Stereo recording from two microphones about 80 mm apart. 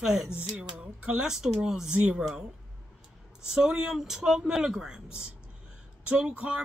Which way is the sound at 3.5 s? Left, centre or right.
Centre.